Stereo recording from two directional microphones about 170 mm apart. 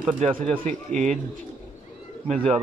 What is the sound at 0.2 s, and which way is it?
Speech, 45° right (ahead or behind).